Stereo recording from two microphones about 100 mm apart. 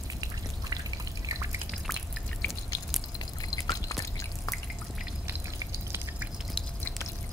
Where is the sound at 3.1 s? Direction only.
40° left (ahead or behind).